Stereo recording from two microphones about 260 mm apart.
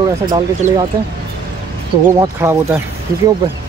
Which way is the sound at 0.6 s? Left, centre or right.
Right.